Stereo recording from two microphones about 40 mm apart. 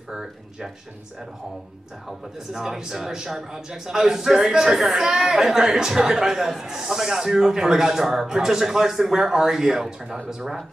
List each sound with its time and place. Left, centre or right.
0.1 s a man's voice: centre
2.0 s a man's voice: centre